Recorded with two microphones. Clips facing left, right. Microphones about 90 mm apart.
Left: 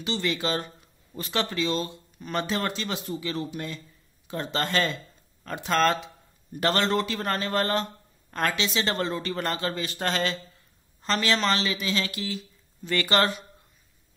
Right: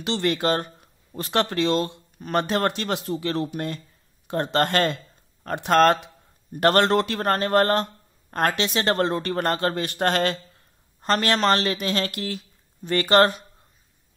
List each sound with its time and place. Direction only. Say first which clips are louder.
0.2 s speech: right 7 dB; 50° right (ahead or behind)
2.1 s speech: right 6 dB; 45° right (ahead or behind)
2.4 s speech: right 5 dB; 55° right (ahead or behind); by 13.3 s 40° right (ahead or behind)